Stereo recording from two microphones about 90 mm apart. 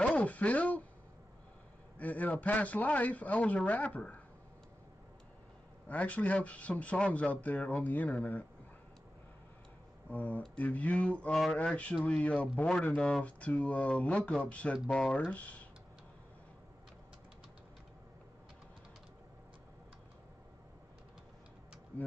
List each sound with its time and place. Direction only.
0.0 s speech: 15° left (ahead or behind)
2.0 s a man's voice: 20° left (ahead or behind)
5.9 s a man's voice: 15° left (ahead or behind)
10.0 s a man's voice: 20° left (ahead or behind)